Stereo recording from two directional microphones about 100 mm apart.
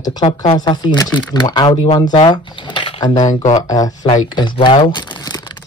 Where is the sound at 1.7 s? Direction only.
70° left (ahead or behind).